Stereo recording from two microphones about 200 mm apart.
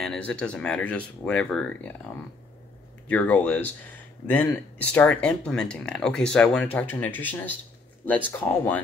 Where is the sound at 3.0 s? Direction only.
5° left (ahead or behind).